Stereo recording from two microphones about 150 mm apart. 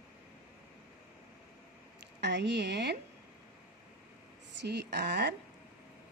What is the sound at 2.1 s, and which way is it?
Speech, 90° right.